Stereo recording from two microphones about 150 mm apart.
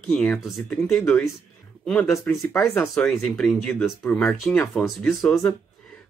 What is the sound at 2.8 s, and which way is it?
Speech, 5° left (ahead or behind).